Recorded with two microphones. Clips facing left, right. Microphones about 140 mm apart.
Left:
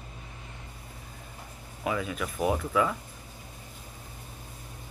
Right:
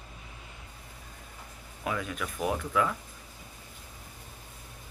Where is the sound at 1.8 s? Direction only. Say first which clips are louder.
Left 3 dB; 5° left (ahead or behind).